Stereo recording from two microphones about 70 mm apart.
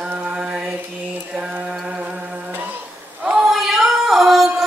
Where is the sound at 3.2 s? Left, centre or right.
Centre.